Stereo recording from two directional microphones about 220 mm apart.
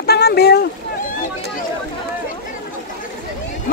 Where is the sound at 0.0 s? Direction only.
45° left (ahead or behind).